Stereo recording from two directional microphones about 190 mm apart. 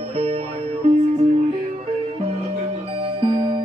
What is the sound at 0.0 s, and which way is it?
Music, 30° right (ahead or behind).